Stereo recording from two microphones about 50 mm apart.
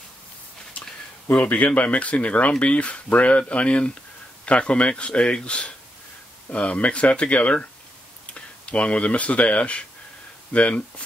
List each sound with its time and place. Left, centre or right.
1.3 s speech: left